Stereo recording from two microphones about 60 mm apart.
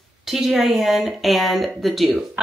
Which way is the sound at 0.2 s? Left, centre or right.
Centre.